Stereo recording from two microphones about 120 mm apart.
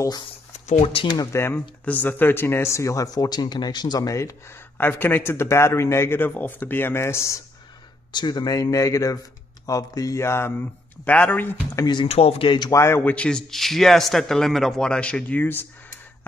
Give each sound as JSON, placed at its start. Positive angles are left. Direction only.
{"t": 0.5, "sound": "a sound", "side_deg": 75}
{"t": 0.9, "sound": "speech", "side_deg": 40}
{"t": 1.3, "sound": "speech", "side_deg": 20}
{"t": 8.1, "sound": "speech", "side_deg": 40}
{"t": 11.8, "sound": "speech", "side_deg": 40}
{"t": 12.1, "sound": "speech", "side_deg": 60}
{"t": 12.7, "sound": "a man's voice", "side_deg": 20}